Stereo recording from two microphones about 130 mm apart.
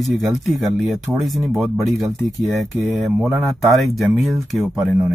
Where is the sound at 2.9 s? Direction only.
5° right (ahead or behind).